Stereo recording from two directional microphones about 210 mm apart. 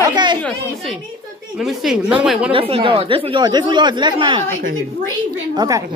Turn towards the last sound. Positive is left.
turn(degrees=-15)  # may be behind; listen again after turning